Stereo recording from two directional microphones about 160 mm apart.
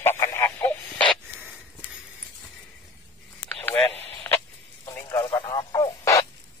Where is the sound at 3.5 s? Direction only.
10° left (ahead or behind).